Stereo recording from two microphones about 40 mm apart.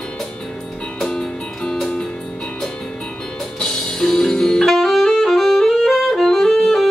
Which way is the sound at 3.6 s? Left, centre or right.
Centre.